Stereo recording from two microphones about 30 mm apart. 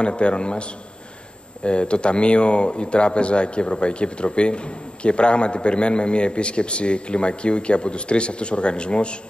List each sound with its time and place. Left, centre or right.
0.0 s speech: left